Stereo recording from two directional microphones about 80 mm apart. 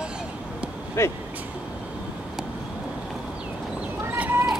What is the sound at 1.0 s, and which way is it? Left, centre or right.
Speech, left.